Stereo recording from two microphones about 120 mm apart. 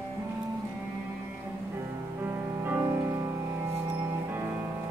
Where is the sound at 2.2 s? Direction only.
15° right (ahead or behind).